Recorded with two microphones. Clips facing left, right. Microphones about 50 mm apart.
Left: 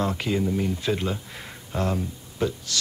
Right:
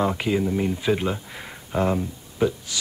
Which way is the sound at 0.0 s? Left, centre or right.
Centre.